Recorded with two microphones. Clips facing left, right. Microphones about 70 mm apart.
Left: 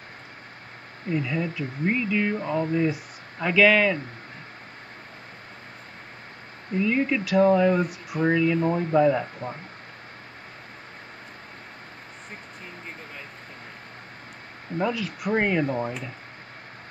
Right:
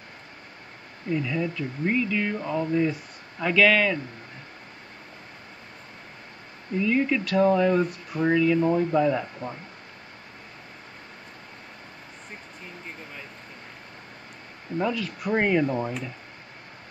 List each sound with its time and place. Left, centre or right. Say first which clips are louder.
1.1 s speech: even; centre
6.8 s speech: even; centre
14.8 s speech: even; centre